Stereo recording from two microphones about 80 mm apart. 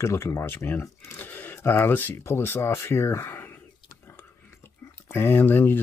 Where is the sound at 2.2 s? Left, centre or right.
Left.